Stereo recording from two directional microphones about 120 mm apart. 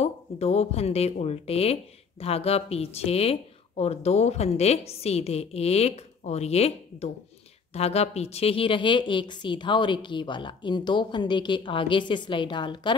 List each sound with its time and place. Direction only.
0.0 s a woman's voice: 60° left (ahead or behind); by 12.9 s 40° left (ahead or behind)